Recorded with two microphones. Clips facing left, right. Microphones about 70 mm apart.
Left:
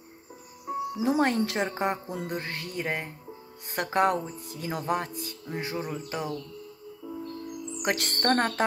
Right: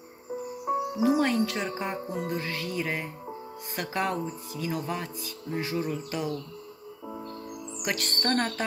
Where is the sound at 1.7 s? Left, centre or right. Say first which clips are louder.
Left 3 dB; left.